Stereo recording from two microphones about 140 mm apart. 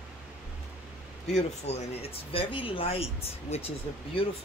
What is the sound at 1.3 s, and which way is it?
Speech, 50° left (ahead or behind).